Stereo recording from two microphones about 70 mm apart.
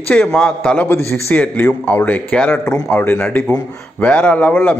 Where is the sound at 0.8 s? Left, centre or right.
Left.